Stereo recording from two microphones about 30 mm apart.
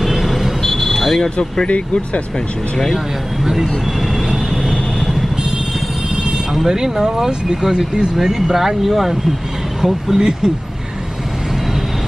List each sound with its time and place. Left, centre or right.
0.0 s vehicle: centre
0.6 s smoke detector: centre
1.1 s speech: left
6.5 s speech: centre
8.8 s speech: centre
10.1 s speech: right